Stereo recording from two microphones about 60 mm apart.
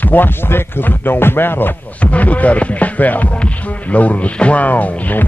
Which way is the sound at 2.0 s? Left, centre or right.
Left.